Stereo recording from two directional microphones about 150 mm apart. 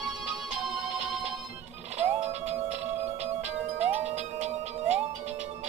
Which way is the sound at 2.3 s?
45° right (ahead or behind).